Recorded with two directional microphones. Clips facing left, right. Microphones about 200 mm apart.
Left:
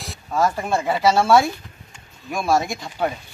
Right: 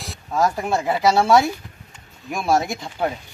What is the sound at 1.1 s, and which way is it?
Speech, 15° right (ahead or behind).